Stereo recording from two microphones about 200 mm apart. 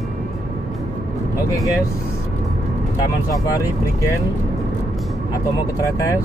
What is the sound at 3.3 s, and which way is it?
Speech, 15° left (ahead or behind).